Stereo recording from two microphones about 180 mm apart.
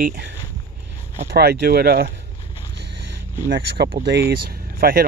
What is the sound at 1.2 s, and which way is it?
Speech, 60° right (ahead or behind).